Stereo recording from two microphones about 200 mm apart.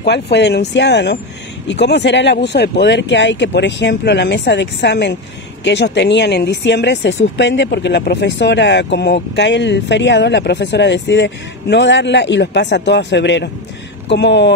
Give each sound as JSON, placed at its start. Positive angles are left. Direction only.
{"t": 0.0, "sound": "speech", "side_deg": 60}